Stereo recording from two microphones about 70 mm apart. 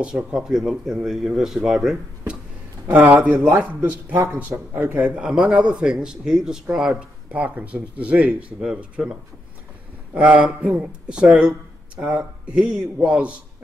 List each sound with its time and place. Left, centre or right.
0.0 s speech: centre
2.9 s speech: right
5.1 s speech: centre